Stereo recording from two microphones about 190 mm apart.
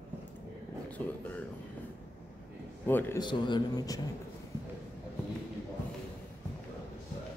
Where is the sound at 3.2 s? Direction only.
25° left (ahead or behind).